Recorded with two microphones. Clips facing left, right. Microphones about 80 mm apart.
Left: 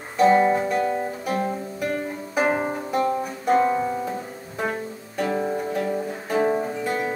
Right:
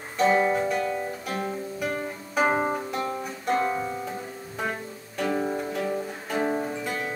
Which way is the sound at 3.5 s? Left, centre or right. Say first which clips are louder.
Left 6 dB; centre.